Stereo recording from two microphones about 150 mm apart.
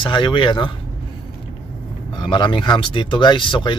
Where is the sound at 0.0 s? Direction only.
30° left (ahead or behind).